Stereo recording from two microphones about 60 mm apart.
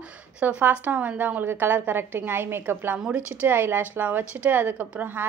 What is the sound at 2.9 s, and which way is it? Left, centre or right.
Speech, centre.